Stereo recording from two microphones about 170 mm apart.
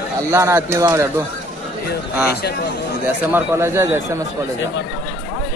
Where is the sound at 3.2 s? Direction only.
15° right (ahead or behind).